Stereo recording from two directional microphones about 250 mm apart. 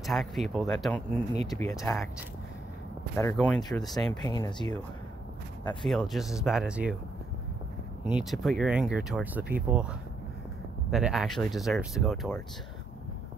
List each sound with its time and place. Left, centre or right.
0.0 s speech: centre
1.5 s speech: centre
3.2 s speech: centre
4.2 s speech: centre
5.9 s speech: centre
8.1 s speech: centre